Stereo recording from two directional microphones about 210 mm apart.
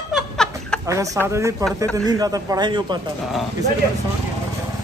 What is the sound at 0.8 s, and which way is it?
Speech, 15° right (ahead or behind).